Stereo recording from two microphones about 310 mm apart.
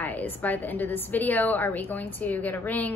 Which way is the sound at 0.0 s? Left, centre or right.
Centre.